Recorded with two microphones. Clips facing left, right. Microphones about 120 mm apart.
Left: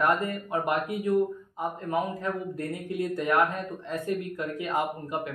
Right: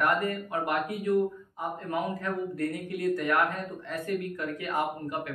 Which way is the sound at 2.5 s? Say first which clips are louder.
Right 1 dB; 20° left (ahead or behind).